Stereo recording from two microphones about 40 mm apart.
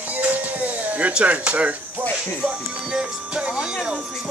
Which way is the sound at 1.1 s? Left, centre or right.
Right.